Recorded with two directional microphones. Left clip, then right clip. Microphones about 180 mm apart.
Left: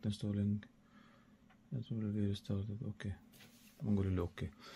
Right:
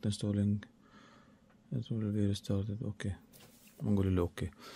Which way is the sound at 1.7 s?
90° right.